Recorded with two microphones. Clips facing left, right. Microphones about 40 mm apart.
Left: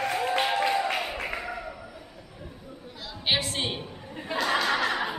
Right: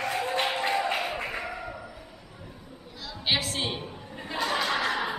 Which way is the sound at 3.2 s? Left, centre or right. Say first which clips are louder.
Left 1 dB; centre.